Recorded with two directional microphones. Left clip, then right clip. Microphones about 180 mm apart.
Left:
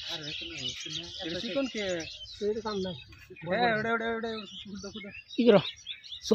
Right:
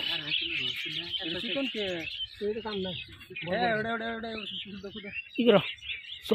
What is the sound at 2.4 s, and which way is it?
Speech, 15° right (ahead or behind).